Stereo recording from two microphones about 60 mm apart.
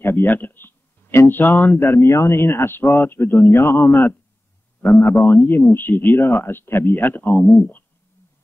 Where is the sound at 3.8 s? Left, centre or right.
Left.